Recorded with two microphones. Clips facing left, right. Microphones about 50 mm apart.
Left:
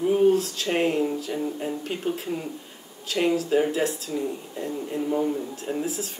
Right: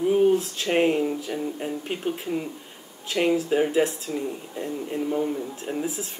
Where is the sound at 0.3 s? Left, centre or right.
Right.